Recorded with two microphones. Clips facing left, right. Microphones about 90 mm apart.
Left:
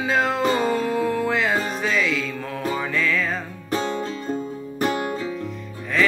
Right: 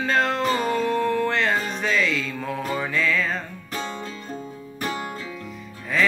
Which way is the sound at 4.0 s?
35° left (ahead or behind).